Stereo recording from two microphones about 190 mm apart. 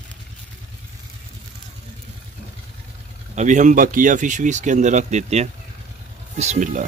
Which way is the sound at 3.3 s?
40° right (ahead or behind).